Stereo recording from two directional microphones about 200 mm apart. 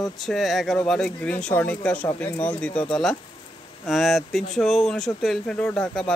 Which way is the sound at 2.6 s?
5° left (ahead or behind).